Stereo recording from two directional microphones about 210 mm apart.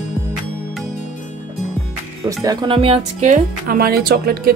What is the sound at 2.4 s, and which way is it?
Speech, 25° right (ahead or behind).